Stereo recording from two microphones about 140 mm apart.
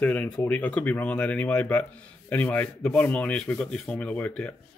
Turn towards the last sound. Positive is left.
turn(degrees=10)  # may be behind; listen again after turning